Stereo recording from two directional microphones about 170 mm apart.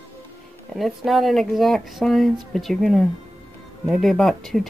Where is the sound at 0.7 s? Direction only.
Centre (ahead or behind).